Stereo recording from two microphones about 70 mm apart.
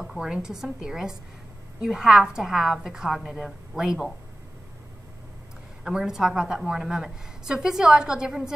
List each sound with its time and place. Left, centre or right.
0.2 s a woman's voice: centre
5.9 s a woman's voice: centre